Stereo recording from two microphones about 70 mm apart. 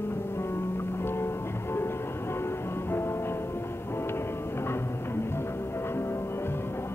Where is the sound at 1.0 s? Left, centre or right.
Left.